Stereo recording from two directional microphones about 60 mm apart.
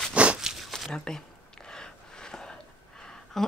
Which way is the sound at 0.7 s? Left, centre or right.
Centre.